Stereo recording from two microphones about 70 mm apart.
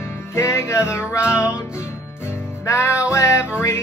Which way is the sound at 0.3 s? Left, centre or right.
Left.